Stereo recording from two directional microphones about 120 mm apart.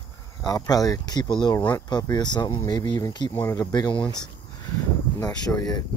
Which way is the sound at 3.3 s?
20° left (ahead or behind).